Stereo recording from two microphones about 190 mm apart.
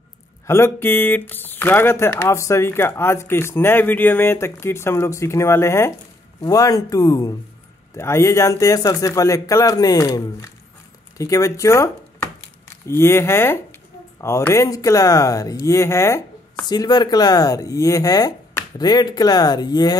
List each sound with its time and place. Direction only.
0.5 s speech: 15° left (ahead or behind)